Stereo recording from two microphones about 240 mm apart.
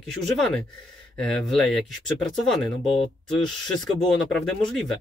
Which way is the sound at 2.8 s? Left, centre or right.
Left.